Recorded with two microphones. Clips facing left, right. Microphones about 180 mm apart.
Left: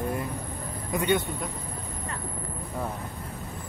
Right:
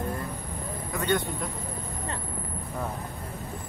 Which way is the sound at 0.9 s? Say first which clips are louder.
Left 2 dB; 10° left (ahead or behind).